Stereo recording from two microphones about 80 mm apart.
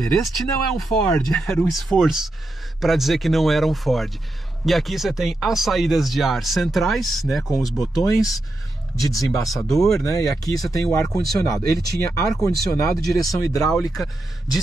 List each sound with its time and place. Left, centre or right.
0.0 s speech: centre
8.0 s speech: left
9.5 s speech: centre
10.0 s speech: left
13.9 s speech: centre